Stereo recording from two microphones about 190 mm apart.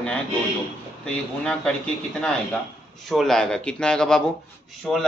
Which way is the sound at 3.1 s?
Centre (ahead or behind).